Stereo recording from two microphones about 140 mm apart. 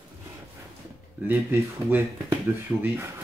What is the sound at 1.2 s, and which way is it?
Speech, 15° right (ahead or behind).